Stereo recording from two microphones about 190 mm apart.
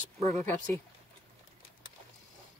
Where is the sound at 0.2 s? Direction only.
35° right (ahead or behind).